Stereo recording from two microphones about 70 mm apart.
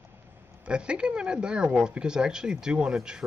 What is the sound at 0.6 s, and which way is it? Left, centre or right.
Speech, centre.